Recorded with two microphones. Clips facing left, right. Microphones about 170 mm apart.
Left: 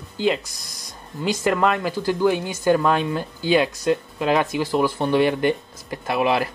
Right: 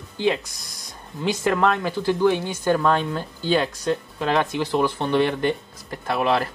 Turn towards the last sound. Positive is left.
turn(degrees=10)  # may be behind; listen again after turning